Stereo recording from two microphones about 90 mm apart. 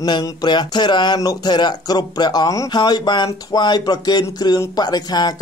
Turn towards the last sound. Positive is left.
turn(degrees=50)  # may be behind; listen again after turning